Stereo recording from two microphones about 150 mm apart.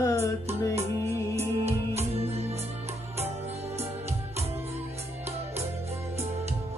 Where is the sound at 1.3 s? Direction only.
45° right (ahead or behind).